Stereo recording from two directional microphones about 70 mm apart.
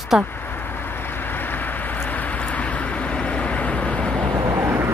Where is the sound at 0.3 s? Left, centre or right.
Left; by 4.4 s centre.